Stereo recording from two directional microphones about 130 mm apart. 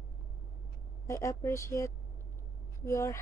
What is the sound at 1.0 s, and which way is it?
A woman's voice, 25° left (ahead or behind).